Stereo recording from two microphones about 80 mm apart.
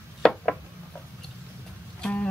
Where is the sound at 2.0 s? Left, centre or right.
Centre.